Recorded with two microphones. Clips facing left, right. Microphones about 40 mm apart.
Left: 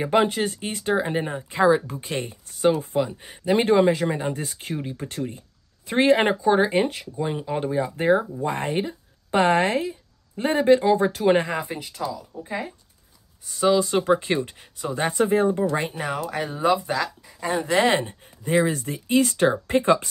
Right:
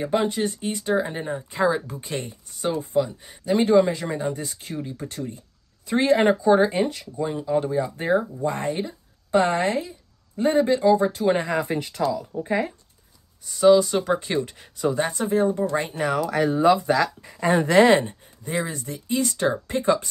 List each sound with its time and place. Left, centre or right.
0.2 s speech: left
1.5 s speech: centre
2.8 s speech: left; by 8.7 s centre
8.7 s a woman's voice: left
11.6 s speech: centre
13.5 s speech: centre
14.6 s speech: centre
15.0 s speech: centre
15.8 s speech: centre
17.6 s speech: centre
18.7 s speech: left